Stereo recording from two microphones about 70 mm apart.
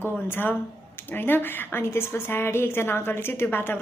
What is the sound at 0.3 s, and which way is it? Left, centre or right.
A woman's voice, left.